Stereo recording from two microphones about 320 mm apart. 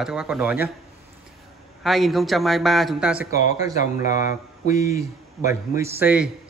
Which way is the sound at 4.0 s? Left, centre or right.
Left.